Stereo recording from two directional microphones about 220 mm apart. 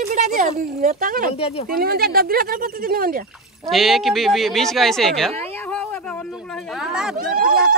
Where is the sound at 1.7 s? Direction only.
45° right (ahead or behind).